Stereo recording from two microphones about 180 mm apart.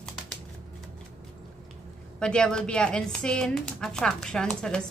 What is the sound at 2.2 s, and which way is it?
Speech, 5° left (ahead or behind).